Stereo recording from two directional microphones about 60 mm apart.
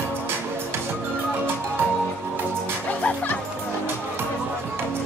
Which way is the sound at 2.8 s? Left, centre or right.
Left.